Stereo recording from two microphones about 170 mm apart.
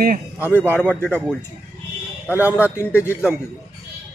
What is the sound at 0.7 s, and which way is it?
Speech, 10° left (ahead or behind).